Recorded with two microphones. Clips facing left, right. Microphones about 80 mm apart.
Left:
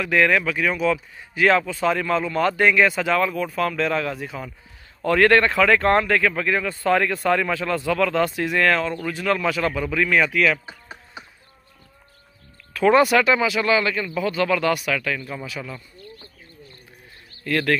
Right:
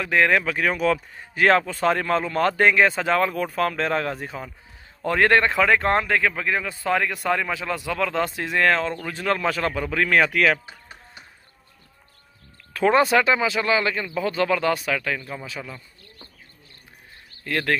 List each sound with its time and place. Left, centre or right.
0.0 s speech: right
0.6 s speech: right
5.0 s speech: right
12.7 s speech: right
17.4 s speech: right